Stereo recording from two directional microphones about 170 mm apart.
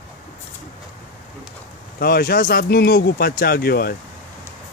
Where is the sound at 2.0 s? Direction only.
60° left (ahead or behind).